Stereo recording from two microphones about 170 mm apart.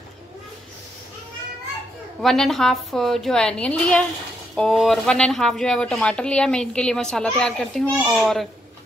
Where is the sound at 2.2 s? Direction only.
Centre (ahead or behind).